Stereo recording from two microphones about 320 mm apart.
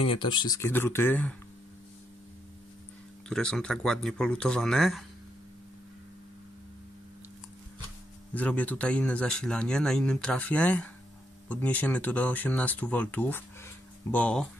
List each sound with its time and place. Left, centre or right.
0.0 s speech: centre
3.3 s speech: centre
8.4 s speech: centre